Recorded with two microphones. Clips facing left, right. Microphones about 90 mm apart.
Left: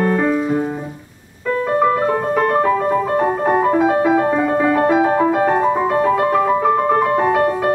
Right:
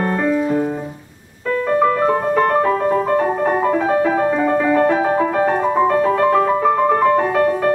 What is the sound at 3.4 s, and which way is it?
Music, 10° left (ahead or behind).